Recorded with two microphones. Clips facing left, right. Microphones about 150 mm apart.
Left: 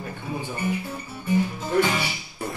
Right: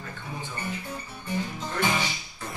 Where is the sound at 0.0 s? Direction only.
15° left (ahead or behind).